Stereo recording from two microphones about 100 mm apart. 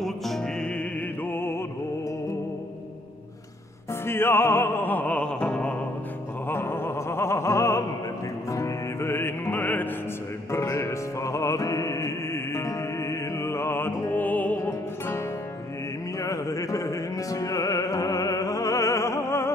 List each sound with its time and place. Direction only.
0.0 s music: 5° left (ahead or behind)
1.2 s music: 25° left (ahead or behind)
4.0 s opera: 25° left (ahead or behind)
6.5 s music: 25° left (ahead or behind)
10.5 s music: 30° left (ahead or behind)
14.6 s music: 30° left (ahead or behind)